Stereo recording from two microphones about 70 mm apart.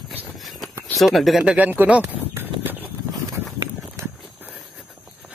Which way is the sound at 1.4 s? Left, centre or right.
Centre.